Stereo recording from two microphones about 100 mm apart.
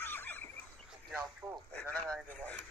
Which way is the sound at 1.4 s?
30° right (ahead or behind).